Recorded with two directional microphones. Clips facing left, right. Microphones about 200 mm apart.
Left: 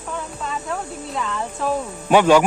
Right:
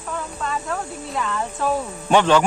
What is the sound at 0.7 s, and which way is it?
Speech, centre (ahead or behind).